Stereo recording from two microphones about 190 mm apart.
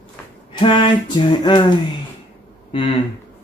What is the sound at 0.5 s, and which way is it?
Speech, 25° left (ahead or behind).